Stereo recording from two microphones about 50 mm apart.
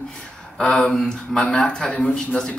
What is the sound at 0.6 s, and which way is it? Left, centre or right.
Speech, centre.